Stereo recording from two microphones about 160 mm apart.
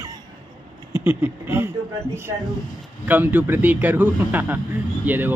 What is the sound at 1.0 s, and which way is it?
A man's voice, 15° right (ahead or behind).